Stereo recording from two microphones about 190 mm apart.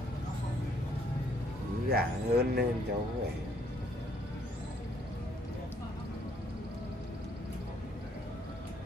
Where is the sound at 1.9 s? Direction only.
55° right (ahead or behind).